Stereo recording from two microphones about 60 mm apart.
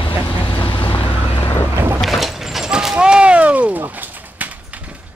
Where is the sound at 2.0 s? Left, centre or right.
Centre; by 4.4 s right.